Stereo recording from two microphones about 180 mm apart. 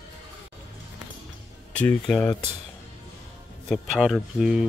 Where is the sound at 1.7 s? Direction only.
5° left (ahead or behind).